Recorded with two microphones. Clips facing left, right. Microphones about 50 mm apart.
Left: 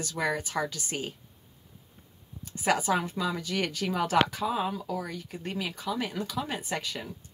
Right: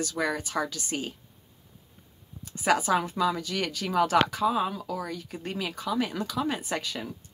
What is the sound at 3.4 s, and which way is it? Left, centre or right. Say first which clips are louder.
Speech: even; left.